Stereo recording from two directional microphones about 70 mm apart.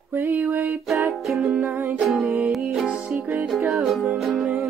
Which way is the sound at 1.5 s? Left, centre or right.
Right.